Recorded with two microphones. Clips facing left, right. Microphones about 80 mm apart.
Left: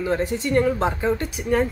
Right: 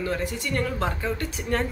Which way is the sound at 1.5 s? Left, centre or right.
Centre.